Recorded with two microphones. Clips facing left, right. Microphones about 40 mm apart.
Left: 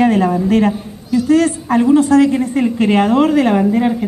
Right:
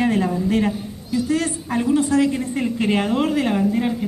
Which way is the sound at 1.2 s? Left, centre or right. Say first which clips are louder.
Left 12 dB; left.